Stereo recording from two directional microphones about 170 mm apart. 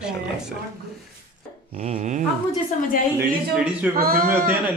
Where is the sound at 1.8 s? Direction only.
35° right (ahead or behind).